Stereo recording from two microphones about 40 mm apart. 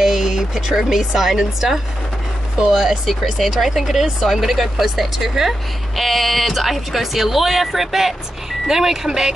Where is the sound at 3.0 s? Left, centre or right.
Centre.